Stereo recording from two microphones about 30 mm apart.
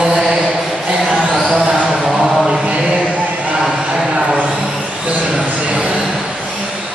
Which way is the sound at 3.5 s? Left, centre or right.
Centre.